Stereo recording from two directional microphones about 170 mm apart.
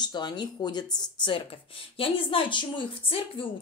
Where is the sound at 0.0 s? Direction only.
25° left (ahead or behind).